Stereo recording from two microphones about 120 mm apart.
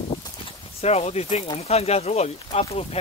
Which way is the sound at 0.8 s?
60° left (ahead or behind).